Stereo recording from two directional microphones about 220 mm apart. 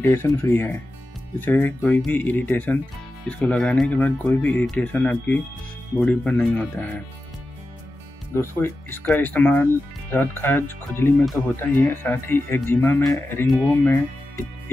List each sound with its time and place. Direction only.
0.0 s speech: 10° left (ahead or behind)
8.4 s speech: 10° left (ahead or behind)